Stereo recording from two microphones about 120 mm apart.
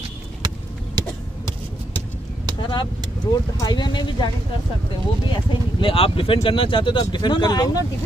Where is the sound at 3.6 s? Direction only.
40° left (ahead or behind).